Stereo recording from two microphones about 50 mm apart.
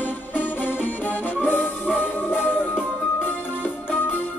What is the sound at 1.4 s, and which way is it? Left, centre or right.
Music, left.